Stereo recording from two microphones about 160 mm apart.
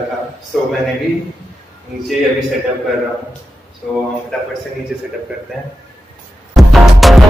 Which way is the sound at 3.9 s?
5° left (ahead or behind).